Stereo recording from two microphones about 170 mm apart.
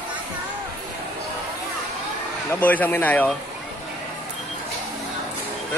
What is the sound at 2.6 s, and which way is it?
Speech, 10° left (ahead or behind).